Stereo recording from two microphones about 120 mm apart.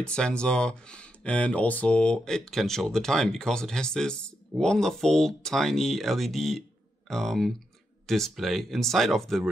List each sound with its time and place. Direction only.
0.0 s speech: 10° left (ahead or behind)